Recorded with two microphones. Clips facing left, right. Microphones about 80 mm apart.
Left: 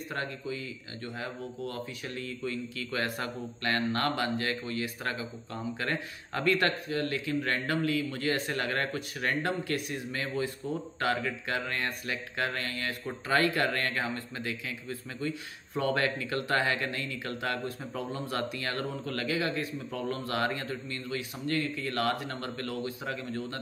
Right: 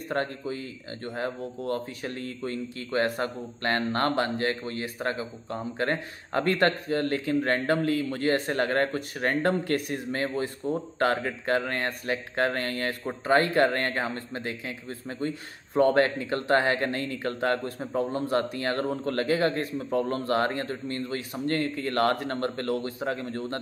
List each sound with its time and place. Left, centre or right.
0.1 s speech: right